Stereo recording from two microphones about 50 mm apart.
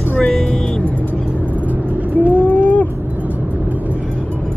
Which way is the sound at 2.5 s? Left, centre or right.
Left.